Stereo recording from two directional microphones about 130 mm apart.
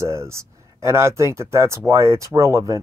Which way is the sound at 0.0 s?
20° right (ahead or behind).